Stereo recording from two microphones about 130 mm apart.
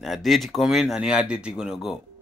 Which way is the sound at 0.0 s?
Centre (ahead or behind).